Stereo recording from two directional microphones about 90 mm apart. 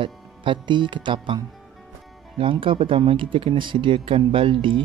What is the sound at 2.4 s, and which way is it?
Speech, 70° right (ahead or behind).